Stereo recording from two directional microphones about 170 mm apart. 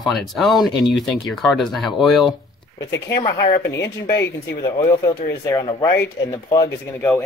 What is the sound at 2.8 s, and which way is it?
Speech, 25° left (ahead or behind).